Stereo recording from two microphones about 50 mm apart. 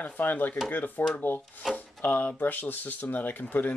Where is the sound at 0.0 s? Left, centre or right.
Left.